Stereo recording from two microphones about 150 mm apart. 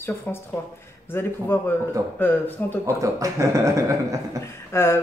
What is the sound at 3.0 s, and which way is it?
Speech, 20° right (ahead or behind).